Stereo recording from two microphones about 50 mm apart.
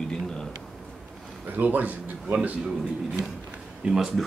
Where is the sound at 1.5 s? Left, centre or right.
Right.